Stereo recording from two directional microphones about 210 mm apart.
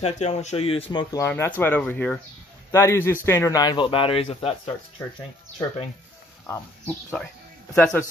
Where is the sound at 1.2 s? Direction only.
10° left (ahead or behind); by 4.7 s 30° left (ahead or behind).